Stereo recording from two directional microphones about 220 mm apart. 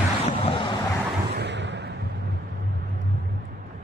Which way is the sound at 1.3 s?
50° right (ahead or behind).